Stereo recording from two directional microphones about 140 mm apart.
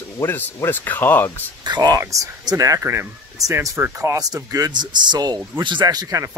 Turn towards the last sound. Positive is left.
turn(degrees=-25)  # may be behind; listen again after turning